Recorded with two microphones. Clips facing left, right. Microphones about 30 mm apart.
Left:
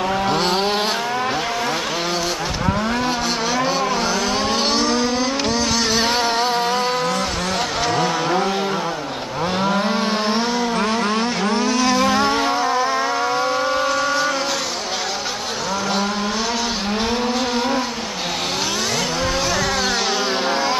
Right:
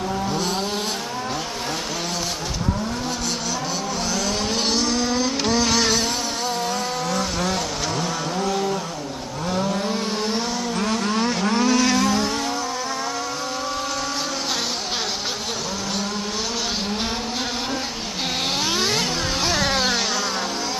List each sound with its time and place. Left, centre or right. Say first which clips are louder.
0.3 s vehicle: left 6 dB; left
4.7 s vehicle: left 3 dB; centre
5.9 s music: left 6 dB; left
7.1 s vehicle: left 2 dB; centre
8.0 s a sound: left 6 dB; left
9.6 s vehicle: left 4 dB; left
11.2 s vehicle: left 1 dB; centre
12.0 s vehicle: left 4 dB; left